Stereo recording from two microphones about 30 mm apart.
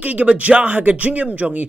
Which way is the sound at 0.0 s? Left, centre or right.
Right.